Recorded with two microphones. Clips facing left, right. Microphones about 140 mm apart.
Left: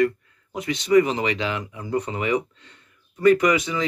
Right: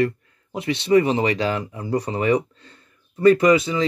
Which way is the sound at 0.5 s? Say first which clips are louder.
Even; 30° right (ahead or behind).